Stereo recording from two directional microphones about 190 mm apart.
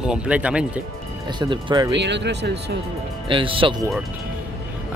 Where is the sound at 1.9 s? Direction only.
65° right (ahead or behind).